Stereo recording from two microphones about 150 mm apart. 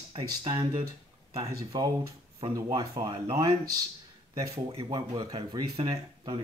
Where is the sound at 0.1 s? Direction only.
35° right (ahead or behind).